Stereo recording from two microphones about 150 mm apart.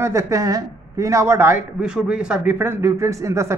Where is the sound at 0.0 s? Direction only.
20° right (ahead or behind).